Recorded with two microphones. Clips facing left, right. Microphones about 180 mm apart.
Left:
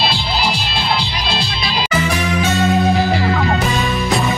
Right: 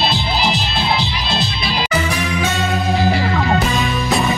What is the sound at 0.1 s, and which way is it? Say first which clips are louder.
Music: right 1 dB; 20° right (ahead or behind).